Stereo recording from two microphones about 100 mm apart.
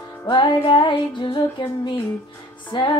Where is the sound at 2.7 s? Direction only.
50° left (ahead or behind).